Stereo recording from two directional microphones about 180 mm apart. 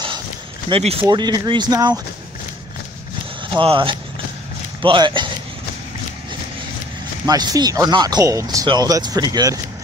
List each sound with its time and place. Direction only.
0.7 s speech: 30° right (ahead or behind)
3.5 s speech: 30° right (ahead or behind)
7.2 s speech: 20° right (ahead or behind)